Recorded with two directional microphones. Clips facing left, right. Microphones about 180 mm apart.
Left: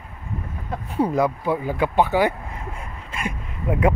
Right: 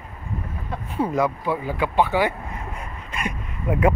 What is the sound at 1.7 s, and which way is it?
Speech, 45° left (ahead or behind).